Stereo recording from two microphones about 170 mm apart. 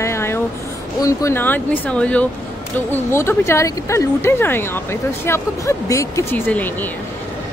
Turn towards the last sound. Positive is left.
turn(degrees=10)  # may be behind; listen again after turning